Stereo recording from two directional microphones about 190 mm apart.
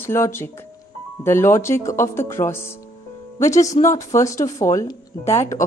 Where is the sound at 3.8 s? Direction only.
15° left (ahead or behind).